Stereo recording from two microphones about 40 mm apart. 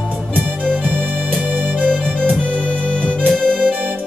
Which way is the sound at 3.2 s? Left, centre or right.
Left.